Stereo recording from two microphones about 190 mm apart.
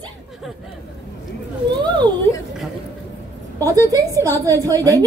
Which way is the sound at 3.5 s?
15° right (ahead or behind).